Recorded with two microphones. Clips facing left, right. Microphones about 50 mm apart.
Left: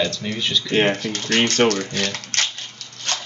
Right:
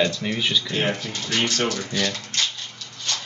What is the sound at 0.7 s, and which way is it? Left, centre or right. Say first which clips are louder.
Speech: left 6 dB; left.